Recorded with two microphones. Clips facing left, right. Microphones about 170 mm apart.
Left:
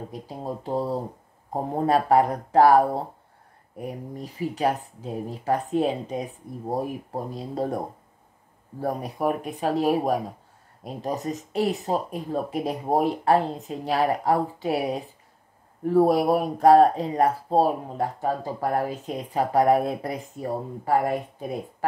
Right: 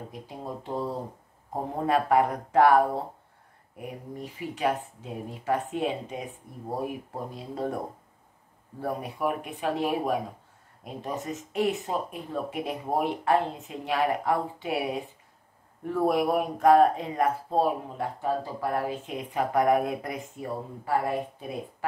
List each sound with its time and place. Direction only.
0.1 s speech: 35° left (ahead or behind)
8.8 s speech: 40° left (ahead or behind)